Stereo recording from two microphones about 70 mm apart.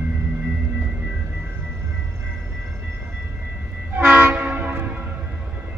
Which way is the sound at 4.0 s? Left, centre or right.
Right.